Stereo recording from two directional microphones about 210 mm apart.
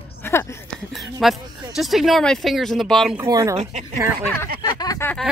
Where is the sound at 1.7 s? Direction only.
Centre (ahead or behind).